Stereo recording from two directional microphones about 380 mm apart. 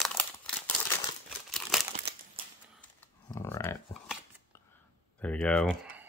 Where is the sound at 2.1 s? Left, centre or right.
Right.